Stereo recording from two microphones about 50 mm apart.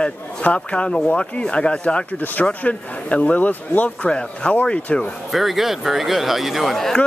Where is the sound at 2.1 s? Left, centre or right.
Left.